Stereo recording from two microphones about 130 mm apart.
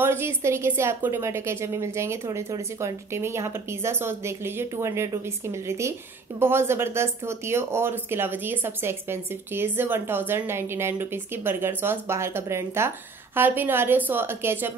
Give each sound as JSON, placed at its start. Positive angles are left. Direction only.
{"t": 0.0, "sound": "speech", "side_deg": -20}